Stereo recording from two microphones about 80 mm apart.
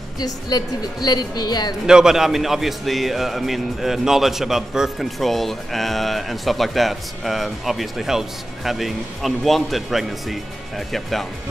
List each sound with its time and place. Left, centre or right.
0.2 s speech: left
1.9 s a man's voice: centre